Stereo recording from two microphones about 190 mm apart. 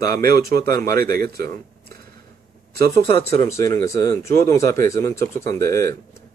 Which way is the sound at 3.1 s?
30° left (ahead or behind).